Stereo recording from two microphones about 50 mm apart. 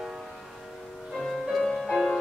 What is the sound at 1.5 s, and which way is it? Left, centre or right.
Music, centre.